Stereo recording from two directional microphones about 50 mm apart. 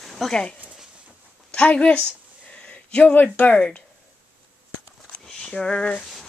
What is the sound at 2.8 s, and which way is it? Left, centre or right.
Speech, centre.